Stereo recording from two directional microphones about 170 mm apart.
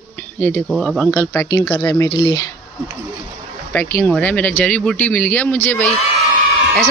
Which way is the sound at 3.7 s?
10° left (ahead or behind).